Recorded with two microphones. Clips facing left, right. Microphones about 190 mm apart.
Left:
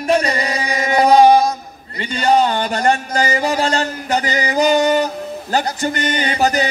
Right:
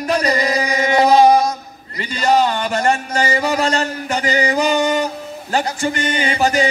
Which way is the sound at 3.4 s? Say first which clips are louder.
Even; 35° left (ahead or behind).